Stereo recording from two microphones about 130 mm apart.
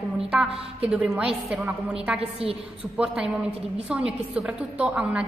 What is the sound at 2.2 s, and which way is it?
Speech, 50° right (ahead or behind).